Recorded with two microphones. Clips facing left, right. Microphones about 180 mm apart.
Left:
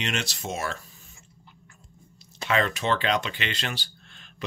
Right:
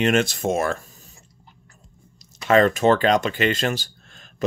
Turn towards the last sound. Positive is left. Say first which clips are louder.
# right 8 dB
turn(degrees=-45)  # may be behind; listen again after turning